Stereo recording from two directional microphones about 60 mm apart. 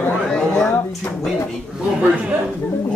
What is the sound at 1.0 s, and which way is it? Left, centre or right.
Speech, left.